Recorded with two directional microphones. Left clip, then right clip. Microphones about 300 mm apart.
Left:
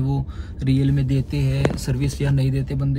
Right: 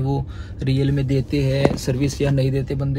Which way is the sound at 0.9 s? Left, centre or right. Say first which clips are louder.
Right 4 dB; centre.